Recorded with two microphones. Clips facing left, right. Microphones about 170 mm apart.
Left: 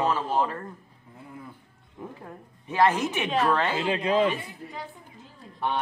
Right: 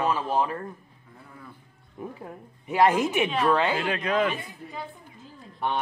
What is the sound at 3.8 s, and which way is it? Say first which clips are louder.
Speech: left 2 dB; 25° left (ahead or behind).